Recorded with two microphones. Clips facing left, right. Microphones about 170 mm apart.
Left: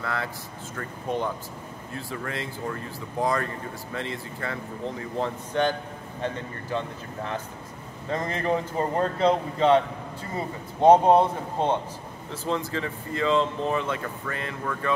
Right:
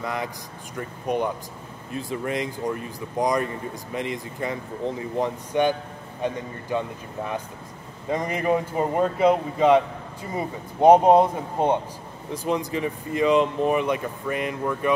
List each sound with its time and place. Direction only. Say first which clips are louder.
0.0 s speech: right 2 dB; 15° right (ahead or behind)
8.1 s speech: right 3 dB; 15° right (ahead or behind)